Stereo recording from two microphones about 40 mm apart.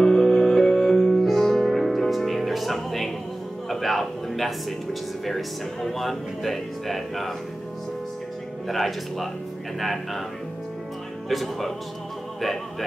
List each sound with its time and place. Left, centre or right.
0.0 s music: centre
3.6 s a sound: centre
5.2 s speech: centre
8.6 s speech: centre
11.2 s speech: centre